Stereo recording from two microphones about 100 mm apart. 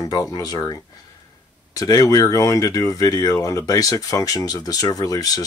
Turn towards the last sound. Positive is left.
turn(degrees=40)  # may be behind; listen again after turning